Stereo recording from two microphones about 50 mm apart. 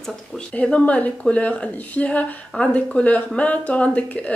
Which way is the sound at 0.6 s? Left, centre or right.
Left.